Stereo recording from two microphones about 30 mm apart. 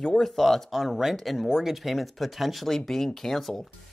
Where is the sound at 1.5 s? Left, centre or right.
Centre.